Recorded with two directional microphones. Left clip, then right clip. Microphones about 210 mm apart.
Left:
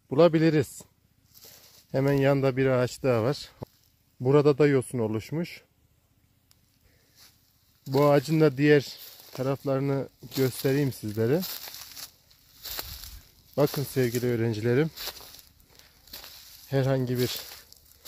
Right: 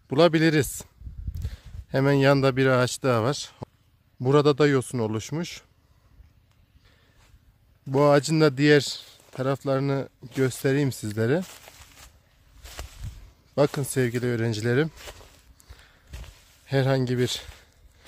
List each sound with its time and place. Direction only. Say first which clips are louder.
0.1 s speech: right 1 dB; 20° right (ahead or behind)
1.9 s speech: right 3 dB; 20° right (ahead or behind)
7.9 s speech: right 2 dB; 10° right (ahead or behind)
11.4 s crumpling: left 6 dB; 50° left (ahead or behind)
12.6 s a sound: left 5 dB; 50° left (ahead or behind)
13.6 s speech: right 2 dB; 15° right (ahead or behind)
16.1 s a sound: left 6 dB; 50° left (ahead or behind)
16.6 s speech: right 3 dB; 15° right (ahead or behind)